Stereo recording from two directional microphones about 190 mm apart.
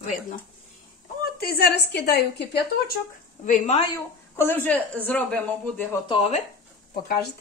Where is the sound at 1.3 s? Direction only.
55° left (ahead or behind).